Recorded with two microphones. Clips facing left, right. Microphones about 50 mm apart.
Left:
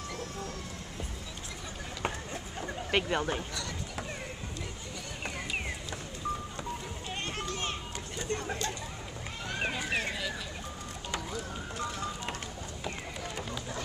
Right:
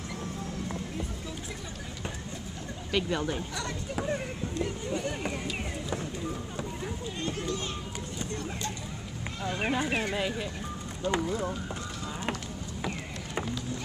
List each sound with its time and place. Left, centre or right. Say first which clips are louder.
2.9 s speech: even; left
3.2 s speech: even; centre
7.2 s run: right 3 dB; left
9.6 s speech: right 3 dB; centre
11.1 s speech: right 9 dB; right